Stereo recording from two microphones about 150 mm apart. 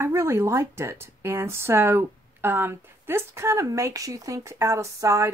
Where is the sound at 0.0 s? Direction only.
15° right (ahead or behind).